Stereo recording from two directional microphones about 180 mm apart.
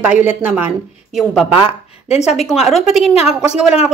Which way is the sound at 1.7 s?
35° left (ahead or behind).